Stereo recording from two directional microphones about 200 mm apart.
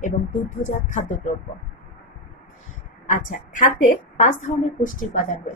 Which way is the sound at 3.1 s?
40° left (ahead or behind).